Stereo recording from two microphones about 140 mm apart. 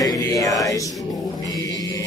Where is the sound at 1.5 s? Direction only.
30° left (ahead or behind).